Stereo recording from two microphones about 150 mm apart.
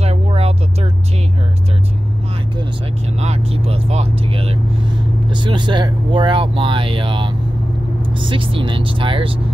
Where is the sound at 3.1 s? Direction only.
45° right (ahead or behind).